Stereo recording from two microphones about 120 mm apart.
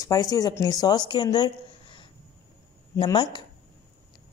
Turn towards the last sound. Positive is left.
turn(degrees=40)  # may be behind; listen again after turning